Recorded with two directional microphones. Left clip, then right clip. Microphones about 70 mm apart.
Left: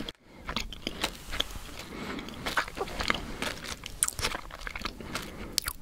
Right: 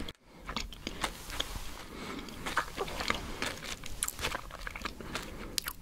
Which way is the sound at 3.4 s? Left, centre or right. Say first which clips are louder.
Left 3 dB; left.